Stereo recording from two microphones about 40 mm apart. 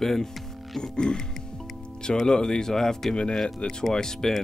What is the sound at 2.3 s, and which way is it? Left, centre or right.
Speech, centre.